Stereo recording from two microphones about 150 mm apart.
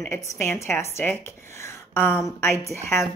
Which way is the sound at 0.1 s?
20° left (ahead or behind).